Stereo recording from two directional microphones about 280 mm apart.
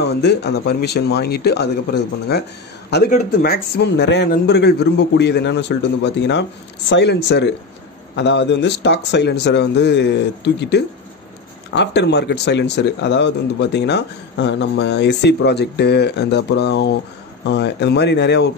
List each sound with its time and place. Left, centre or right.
0.0 s speech: left